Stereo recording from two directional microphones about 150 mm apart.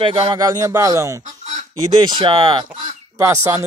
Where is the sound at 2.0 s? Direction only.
30° right (ahead or behind).